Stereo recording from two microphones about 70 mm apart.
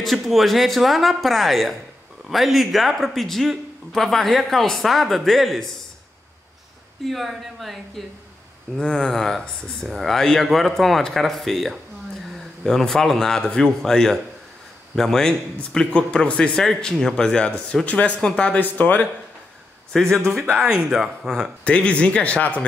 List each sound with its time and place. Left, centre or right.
0.0 s speech: centre
7.1 s speech: centre
17.8 s speech: centre
19.9 s speech: centre
20.7 s speech: centre
21.6 s speech: centre